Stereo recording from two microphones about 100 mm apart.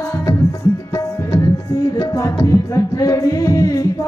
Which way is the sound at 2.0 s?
35° left (ahead or behind).